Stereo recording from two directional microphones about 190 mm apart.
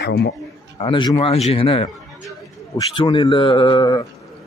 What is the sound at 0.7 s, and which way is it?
Speech, 25° left (ahead or behind).